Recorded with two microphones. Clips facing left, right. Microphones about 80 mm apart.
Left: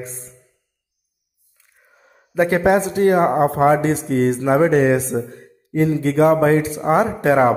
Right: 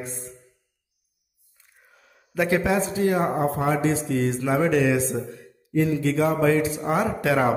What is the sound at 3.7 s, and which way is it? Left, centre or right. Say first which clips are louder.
A man's voice: left 6 dB; left.